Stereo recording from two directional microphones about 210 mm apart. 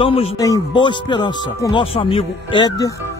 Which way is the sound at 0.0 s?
25° left (ahead or behind).